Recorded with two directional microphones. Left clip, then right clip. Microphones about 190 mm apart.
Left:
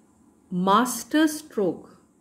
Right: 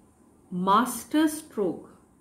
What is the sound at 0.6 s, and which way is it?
Speech, 50° left (ahead or behind).